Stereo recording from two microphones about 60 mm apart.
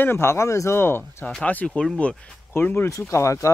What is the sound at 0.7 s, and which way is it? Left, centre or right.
Speech, left.